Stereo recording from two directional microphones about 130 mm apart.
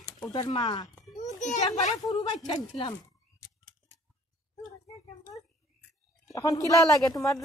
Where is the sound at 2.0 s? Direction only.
35° left (ahead or behind).